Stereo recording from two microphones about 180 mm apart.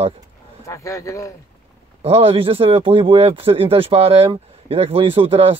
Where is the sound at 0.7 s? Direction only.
15° left (ahead or behind).